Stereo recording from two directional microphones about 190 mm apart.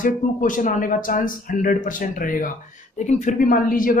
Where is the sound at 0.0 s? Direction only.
45° left (ahead or behind).